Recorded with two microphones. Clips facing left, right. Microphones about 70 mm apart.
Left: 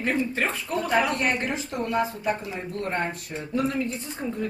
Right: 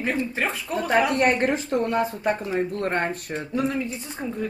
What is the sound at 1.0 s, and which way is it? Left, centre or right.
Speech, right.